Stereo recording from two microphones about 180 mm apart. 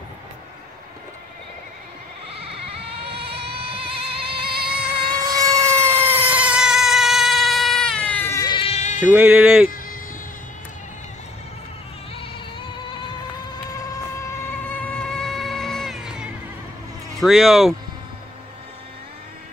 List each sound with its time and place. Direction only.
3.2 s a sound: 65° right (ahead or behind)
3.5 s music: 30° right (ahead or behind)
5.0 s vehicle: 20° right (ahead or behind); by 9.0 s 40° left (ahead or behind)
9.0 s speech: 10° right (ahead or behind)
14.7 s vehicle: 5° left (ahead or behind)
17.2 s speech: centre (ahead or behind)